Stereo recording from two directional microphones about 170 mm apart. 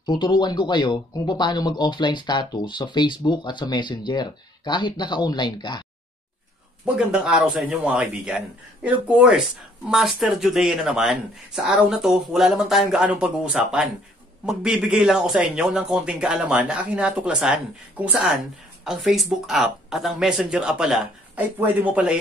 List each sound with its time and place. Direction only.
0.2 s speech: 25° left (ahead or behind)
7.0 s speech: 5° right (ahead or behind)